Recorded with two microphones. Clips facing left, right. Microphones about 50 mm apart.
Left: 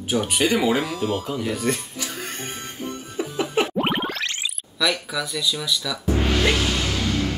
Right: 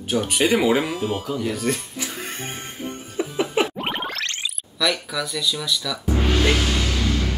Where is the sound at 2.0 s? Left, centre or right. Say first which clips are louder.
Right 1 dB; centre.